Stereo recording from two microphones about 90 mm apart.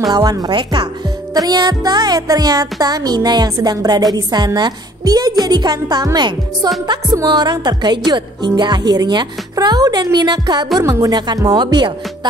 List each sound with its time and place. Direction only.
0.0 s speech: 45° right (ahead or behind)
10.8 s a woman's voice: 40° right (ahead or behind)
11.1 s speech: 50° right (ahead or behind)